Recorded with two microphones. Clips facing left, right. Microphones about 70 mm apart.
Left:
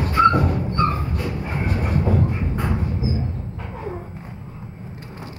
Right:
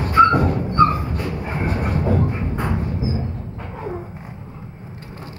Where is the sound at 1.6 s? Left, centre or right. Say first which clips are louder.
Right 3 dB; centre.